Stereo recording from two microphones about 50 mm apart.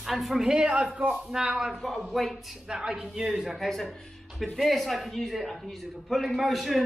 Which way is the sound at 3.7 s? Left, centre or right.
Centre.